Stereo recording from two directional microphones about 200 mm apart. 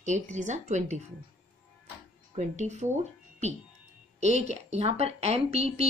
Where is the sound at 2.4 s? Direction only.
35° right (ahead or behind).